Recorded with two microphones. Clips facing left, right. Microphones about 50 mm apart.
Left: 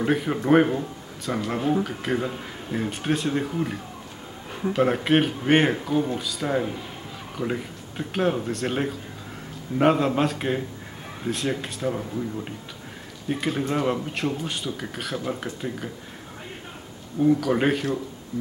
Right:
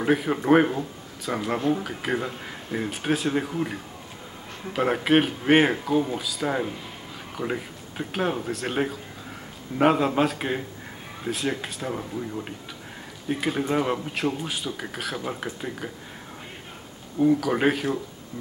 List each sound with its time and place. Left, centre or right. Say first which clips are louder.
0.0 s speech: right 1 dB; centre
17.2 s speech: even; centre